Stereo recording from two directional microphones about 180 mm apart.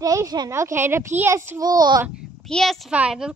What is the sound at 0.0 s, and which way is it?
A child's voice, 20° right (ahead or behind).